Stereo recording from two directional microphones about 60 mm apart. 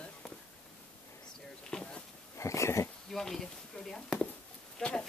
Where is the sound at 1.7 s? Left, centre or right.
Centre.